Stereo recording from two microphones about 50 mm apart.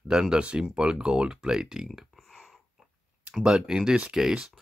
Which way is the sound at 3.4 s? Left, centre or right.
Centre.